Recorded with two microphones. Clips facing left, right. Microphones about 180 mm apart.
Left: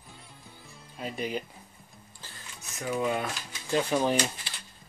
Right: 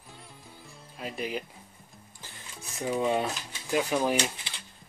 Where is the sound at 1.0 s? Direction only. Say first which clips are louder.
Left 1 dB; 5° right (ahead or behind).